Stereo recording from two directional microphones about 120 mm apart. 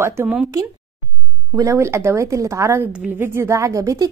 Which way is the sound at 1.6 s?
25° right (ahead or behind).